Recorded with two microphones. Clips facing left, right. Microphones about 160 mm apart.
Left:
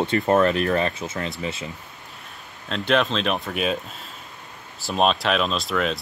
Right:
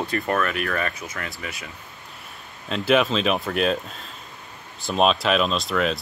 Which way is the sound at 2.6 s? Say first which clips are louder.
Right 2 dB; 5° right (ahead or behind).